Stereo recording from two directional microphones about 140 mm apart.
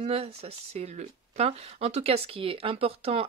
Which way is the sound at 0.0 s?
45° right (ahead or behind).